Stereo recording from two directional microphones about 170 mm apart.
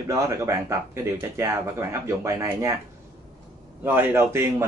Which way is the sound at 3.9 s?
15° right (ahead or behind).